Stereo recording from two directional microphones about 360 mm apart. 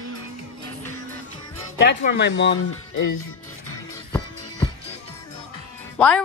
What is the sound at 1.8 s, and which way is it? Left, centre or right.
Speech, left.